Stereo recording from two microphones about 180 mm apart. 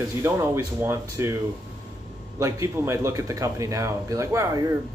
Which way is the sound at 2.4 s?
15° right (ahead or behind).